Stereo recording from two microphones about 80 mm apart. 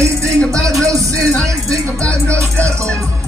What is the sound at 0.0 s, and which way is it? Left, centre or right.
Music, right.